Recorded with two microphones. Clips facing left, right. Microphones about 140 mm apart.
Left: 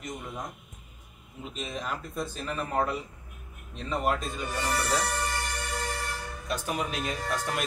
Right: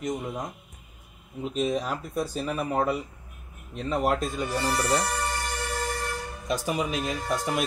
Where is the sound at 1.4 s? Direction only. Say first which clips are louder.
Right 9 dB; 5° right (ahead or behind).